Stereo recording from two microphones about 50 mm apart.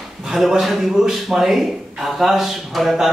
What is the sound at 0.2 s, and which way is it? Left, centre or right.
A man's voice, centre.